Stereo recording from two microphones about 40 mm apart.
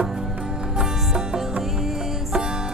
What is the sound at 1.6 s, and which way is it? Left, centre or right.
Music, centre.